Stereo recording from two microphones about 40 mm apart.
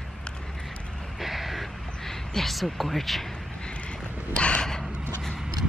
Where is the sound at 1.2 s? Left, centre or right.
Centre.